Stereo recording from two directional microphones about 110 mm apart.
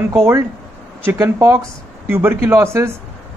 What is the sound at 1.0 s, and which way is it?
Speech, 25° right (ahead or behind).